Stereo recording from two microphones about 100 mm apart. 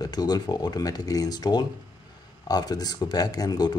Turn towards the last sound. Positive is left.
turn(degrees=40)  # may be behind; listen again after turning